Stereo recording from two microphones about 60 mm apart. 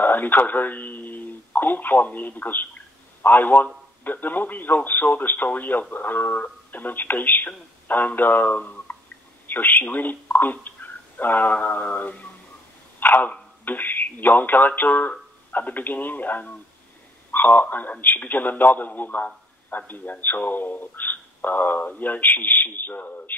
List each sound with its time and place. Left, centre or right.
0.0 s a man's voice: left